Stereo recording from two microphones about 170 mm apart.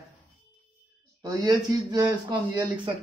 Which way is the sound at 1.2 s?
20° right (ahead or behind).